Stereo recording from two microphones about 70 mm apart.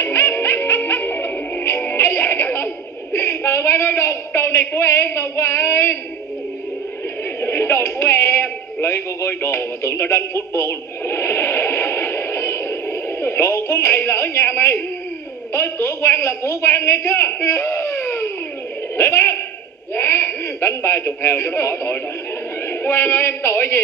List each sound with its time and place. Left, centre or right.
0.0 s music: left
7.3 s a sound: left
8.8 s radio: left
13.2 s a woman's voice: left
17.4 s baby cry: left
18.9 s a man's voice: left